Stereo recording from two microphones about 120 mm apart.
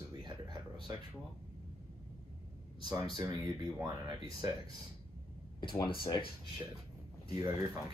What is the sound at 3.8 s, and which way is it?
Speech, 35° right (ahead or behind).